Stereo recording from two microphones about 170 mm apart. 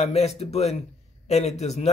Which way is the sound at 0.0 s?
40° left (ahead or behind).